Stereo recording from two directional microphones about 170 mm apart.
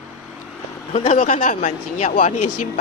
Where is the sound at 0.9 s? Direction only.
40° left (ahead or behind).